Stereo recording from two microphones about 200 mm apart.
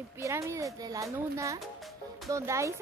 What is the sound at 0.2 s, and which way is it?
Speech, 15° right (ahead or behind).